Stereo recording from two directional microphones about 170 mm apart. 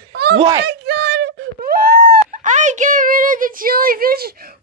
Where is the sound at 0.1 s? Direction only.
70° right (ahead or behind).